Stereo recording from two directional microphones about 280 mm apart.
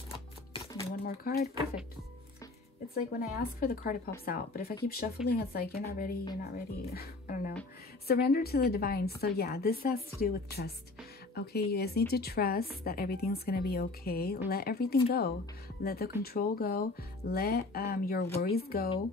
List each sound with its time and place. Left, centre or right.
1.0 s a woman's voice: left
2.9 s a woman's voice: left